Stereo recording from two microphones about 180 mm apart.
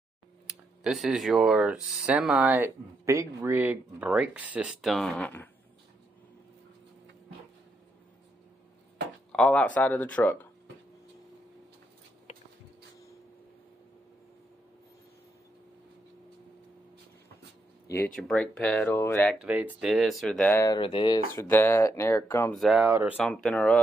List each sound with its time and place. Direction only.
0.5 s speech: centre (ahead or behind)
9.3 s speech: 5° left (ahead or behind)
12.3 s a sound: 35° left (ahead or behind)
17.8 s speech: 10° left (ahead or behind)
19.3 s speech: 5° right (ahead or behind); by 21.2 s 25° left (ahead or behind)
21.4 s speech: 10° left (ahead or behind)
22.5 s speech: centre (ahead or behind)